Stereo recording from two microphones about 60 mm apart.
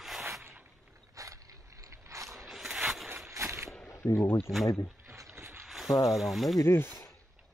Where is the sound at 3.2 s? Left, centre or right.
Right.